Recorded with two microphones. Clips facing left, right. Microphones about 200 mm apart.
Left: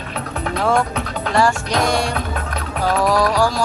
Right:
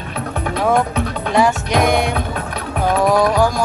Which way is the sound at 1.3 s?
20° right (ahead or behind).